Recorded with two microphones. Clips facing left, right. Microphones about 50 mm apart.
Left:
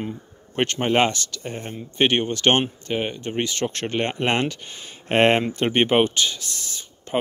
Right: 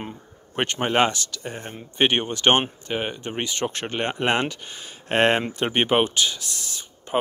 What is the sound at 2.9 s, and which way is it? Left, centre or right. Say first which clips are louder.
Speech: left 2 dB; centre.